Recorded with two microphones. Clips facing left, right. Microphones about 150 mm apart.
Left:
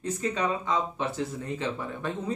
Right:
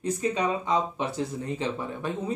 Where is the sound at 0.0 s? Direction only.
15° right (ahead or behind).